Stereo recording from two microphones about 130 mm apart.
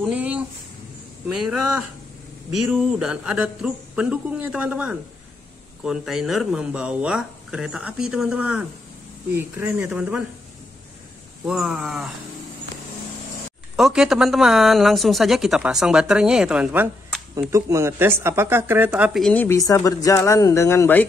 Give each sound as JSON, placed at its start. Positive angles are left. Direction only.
{"t": 0.0, "sound": "speech", "side_deg": -10}
{"t": 11.4, "sound": "speech", "side_deg": -5}
{"t": 13.7, "sound": "speech", "side_deg": -5}
{"t": 17.4, "sound": "speech", "side_deg": -25}
{"t": 19.3, "sound": "speech", "side_deg": 20}